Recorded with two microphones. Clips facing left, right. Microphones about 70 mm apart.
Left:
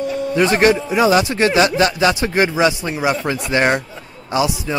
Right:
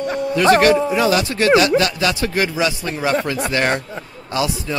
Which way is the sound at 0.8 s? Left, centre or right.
Centre.